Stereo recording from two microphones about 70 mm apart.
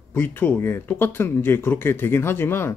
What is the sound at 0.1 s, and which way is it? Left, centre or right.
Speech, left.